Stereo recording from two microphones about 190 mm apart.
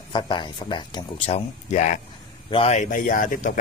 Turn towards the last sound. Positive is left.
turn(degrees=45)  # may be behind; listen again after turning